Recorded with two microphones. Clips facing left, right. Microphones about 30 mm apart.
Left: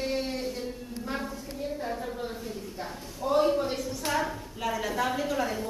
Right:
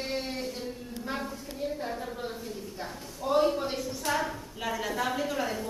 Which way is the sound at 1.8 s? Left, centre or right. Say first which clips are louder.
Left 1 dB; centre.